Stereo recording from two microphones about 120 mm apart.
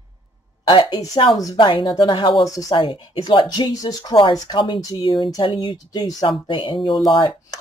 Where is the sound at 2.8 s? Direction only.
40° left (ahead or behind).